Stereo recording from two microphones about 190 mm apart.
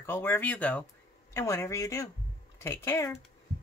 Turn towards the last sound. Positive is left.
turn(degrees=15)  # may be behind; listen again after turning